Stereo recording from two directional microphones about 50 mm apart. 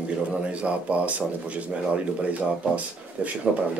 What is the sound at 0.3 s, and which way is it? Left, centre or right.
Speech, right.